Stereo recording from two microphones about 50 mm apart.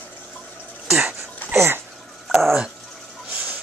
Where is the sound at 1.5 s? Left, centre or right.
Right.